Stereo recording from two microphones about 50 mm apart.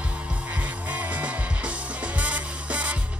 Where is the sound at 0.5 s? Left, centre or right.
Right.